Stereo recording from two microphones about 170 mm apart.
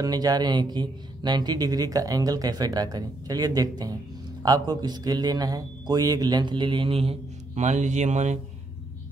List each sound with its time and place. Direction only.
0.0 s speech: 20° right (ahead or behind); by 8.4 s 45° right (ahead or behind)